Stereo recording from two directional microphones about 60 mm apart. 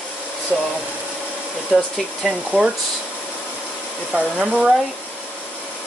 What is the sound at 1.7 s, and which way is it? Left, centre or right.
Speech, centre.